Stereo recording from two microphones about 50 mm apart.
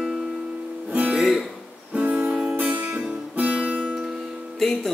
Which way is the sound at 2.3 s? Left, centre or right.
Centre.